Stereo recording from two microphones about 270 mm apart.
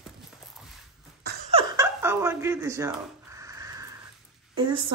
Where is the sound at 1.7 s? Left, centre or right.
Centre.